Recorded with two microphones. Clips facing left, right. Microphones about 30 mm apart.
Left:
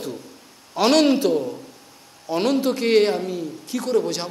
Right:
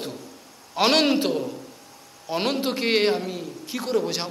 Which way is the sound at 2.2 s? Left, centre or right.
Centre.